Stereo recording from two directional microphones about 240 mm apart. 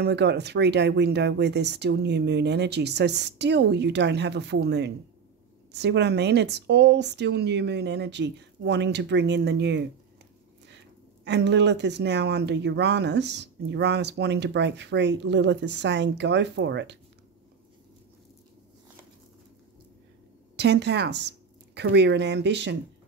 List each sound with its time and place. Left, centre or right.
0.0 s speech: right
11.2 s speech: right
20.5 s speech: right